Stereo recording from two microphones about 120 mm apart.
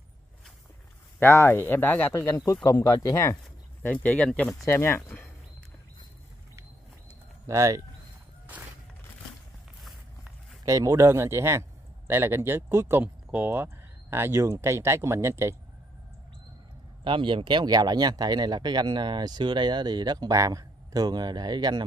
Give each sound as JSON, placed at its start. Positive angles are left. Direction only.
{"t": 1.2, "sound": "speech", "side_deg": 20}
{"t": 2.3, "sound": "speech", "side_deg": 30}
{"t": 3.8, "sound": "speech", "side_deg": 15}
{"t": 4.6, "sound": "speech", "side_deg": 20}
{"t": 7.4, "sound": "speech", "side_deg": -25}
{"t": 10.6, "sound": "speech", "side_deg": -30}
{"t": 17.0, "sound": "speech", "side_deg": -45}